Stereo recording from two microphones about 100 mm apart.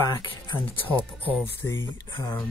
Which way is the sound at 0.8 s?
20° right (ahead or behind).